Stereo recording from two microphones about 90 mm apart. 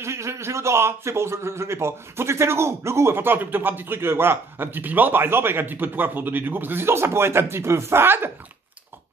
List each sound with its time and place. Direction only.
0.0 s a man's voice: 30° right (ahead or behind)